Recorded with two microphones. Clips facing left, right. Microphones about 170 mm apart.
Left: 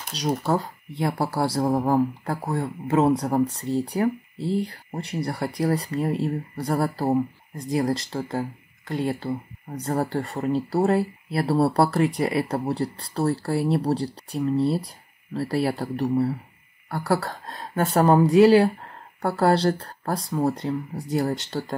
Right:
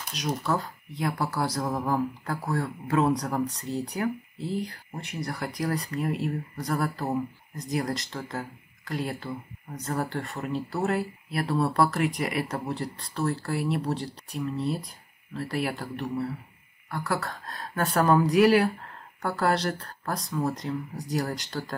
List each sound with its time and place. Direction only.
0.1 s speech: 30° left (ahead or behind)